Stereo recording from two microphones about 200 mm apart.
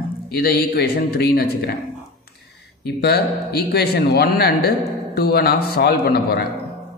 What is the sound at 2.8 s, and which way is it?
A man's voice, 55° left (ahead or behind).